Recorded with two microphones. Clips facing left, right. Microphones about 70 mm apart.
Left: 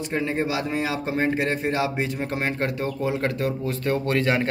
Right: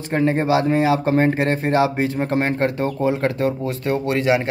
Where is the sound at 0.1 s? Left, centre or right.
Right.